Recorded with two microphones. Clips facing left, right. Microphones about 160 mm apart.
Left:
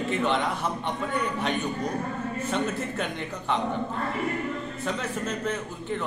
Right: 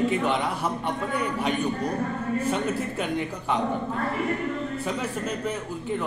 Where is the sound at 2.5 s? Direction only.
5° right (ahead or behind).